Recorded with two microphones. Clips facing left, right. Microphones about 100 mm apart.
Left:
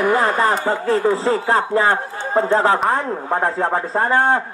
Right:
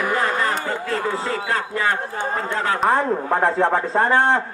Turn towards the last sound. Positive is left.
turn(degrees=10)  # may be behind; listen again after turning